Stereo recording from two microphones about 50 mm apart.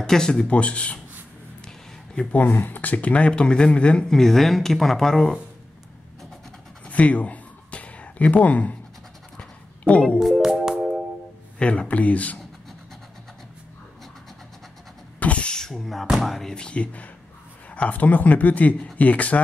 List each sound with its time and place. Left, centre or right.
0.0 s speech: centre
2.3 s speech: left
4.1 s speech: centre
6.9 s a sound: left
9.4 s pant: left
10.3 s music: centre
11.5 s speech: left
15.1 s beatboxing: left
15.5 s a sound: centre
16.1 s music: centre
16.3 s speech: centre; by 19.4 s left